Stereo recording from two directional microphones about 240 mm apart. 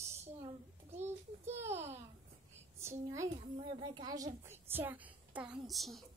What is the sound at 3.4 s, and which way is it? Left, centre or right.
A child's voice, centre.